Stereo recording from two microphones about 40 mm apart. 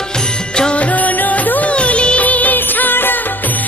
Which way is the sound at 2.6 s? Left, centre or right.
Left.